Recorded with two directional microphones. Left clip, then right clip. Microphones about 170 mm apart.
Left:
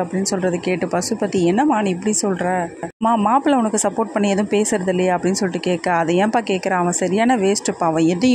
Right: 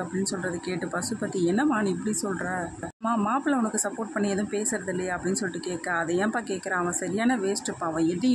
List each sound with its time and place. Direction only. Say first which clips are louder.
0.5 s speech: left 11 dB; 25° left (ahead or behind)